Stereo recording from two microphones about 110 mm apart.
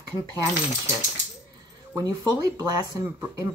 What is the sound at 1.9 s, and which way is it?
Speech, 35° right (ahead or behind).